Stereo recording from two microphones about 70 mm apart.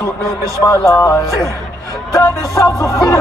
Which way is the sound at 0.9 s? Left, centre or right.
Left.